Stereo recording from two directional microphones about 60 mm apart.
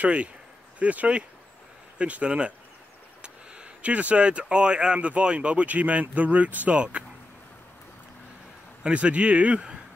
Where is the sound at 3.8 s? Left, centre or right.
Right.